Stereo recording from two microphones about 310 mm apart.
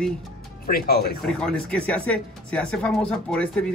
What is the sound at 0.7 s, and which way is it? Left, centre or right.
Speech, left.